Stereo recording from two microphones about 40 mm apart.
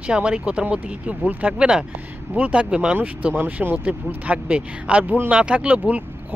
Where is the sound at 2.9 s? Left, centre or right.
Right.